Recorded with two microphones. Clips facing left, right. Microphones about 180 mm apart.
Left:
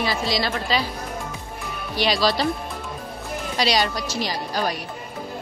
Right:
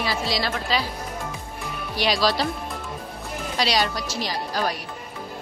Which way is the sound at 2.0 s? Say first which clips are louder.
Left 1 dB; 5° right (ahead or behind).